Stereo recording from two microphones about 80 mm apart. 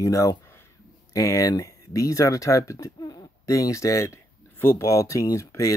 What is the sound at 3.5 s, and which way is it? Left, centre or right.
Speech, left.